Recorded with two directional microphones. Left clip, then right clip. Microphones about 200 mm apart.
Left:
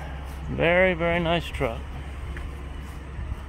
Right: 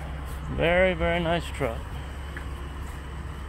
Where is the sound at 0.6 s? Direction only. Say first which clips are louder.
Left 2 dB; 20° left (ahead or behind).